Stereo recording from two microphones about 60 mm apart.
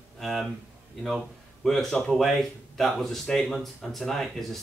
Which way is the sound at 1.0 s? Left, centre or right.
Centre.